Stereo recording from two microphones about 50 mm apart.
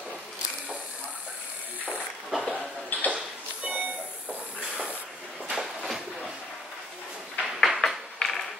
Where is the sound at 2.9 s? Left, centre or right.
Left.